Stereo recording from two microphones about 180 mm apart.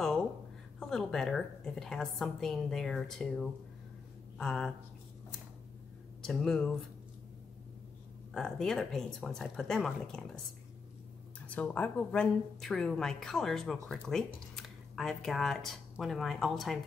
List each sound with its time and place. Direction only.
0.7 s a woman's voice: 5° left (ahead or behind)
6.2 s a woman's voice: 5° left (ahead or behind)
8.3 s a woman's voice: 5° left (ahead or behind)
11.4 s a woman's voice: 10° left (ahead or behind)